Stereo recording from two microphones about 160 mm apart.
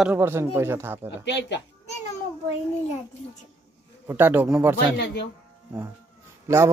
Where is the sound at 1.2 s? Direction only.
90° left.